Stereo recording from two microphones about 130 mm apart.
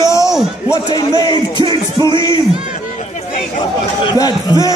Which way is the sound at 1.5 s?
35° right (ahead or behind).